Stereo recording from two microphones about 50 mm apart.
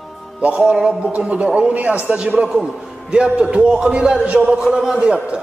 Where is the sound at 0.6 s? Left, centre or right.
Centre.